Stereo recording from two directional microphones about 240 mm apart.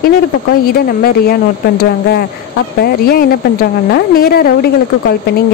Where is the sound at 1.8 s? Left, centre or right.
Left.